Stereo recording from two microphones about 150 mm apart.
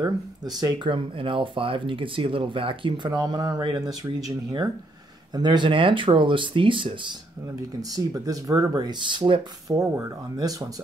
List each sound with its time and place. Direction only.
0.0 s speech: 25° right (ahead or behind)
7.9 s speech: 25° right (ahead or behind)